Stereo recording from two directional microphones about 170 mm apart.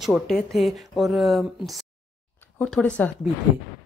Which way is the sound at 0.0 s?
Centre (ahead or behind).